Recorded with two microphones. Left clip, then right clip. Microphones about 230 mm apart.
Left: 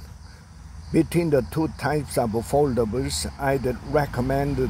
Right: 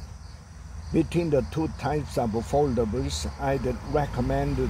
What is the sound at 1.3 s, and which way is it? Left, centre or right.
Speech, left.